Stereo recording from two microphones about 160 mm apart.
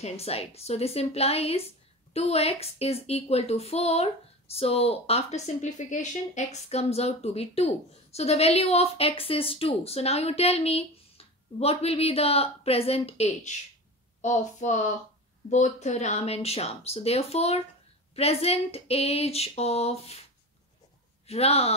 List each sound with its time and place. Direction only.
0.0 s a woman's voice: 40° left (ahead or behind)
14.2 s a sound: 50° left (ahead or behind)
15.5 s a woman's voice: 45° left (ahead or behind)
21.3 s a woman's voice: 40° left (ahead or behind)